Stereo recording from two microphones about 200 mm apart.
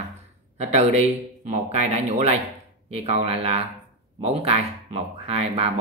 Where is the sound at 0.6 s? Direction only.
35° right (ahead or behind).